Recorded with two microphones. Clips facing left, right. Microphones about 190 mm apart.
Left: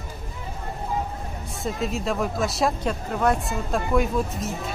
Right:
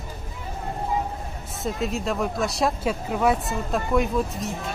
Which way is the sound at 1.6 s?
Centre (ahead or behind).